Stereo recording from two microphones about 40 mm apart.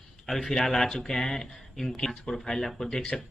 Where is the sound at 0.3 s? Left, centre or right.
Centre.